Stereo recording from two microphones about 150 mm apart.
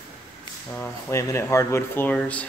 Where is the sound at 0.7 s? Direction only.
15° left (ahead or behind).